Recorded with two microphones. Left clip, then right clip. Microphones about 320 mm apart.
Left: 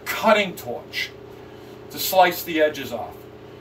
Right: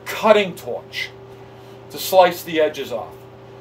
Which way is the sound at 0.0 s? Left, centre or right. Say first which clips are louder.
Right 3 dB; right.